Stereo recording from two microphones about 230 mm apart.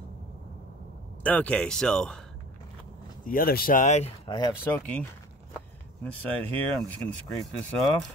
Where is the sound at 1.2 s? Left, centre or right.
Centre.